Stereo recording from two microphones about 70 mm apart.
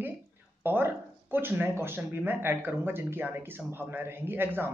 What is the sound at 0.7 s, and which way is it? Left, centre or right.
Speech, right.